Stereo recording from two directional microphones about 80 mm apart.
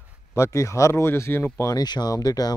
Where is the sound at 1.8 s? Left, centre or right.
Left.